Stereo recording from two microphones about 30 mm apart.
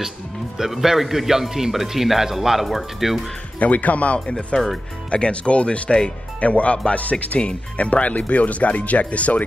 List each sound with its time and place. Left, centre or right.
0.7 s a man's voice: centre
3.5 s speech: left
5.9 s speech: left
6.4 s speech: left
7.3 s speech: left